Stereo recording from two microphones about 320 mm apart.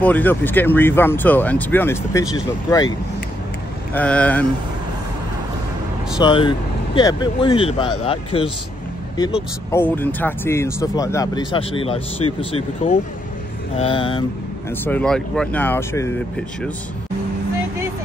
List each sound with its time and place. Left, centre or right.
0.0 s speech: centre
3.9 s speech: centre
6.2 s speech: centre
14.9 s speech: centre